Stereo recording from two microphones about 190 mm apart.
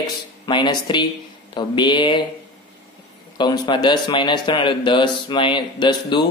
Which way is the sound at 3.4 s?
20° left (ahead or behind).